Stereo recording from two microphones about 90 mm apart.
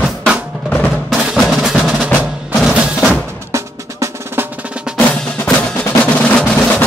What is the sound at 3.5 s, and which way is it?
Music, 35° right (ahead or behind).